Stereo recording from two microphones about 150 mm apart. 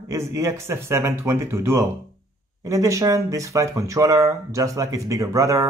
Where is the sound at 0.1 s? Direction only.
20° right (ahead or behind).